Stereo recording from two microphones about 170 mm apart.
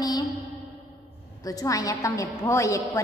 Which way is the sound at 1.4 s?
20° left (ahead or behind).